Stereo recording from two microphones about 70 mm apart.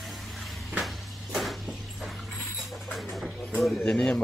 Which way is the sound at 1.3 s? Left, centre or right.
Centre.